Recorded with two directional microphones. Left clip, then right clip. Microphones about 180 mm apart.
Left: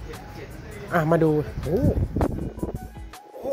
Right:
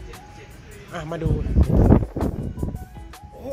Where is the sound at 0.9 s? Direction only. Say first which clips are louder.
Left 10 dB; 45° left (ahead or behind).